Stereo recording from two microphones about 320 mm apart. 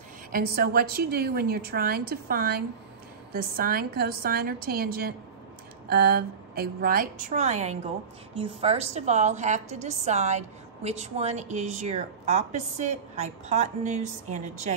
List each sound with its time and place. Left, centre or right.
0.3 s a woman's voice: right